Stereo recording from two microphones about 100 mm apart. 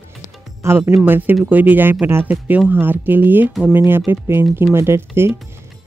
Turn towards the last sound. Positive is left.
turn(degrees=-25)  # may be behind; listen again after turning